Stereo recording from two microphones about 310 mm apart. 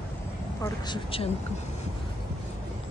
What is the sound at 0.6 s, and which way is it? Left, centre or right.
Speech, centre.